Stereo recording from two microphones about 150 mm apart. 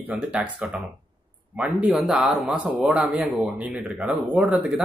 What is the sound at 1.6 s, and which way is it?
Speech, centre (ahead or behind).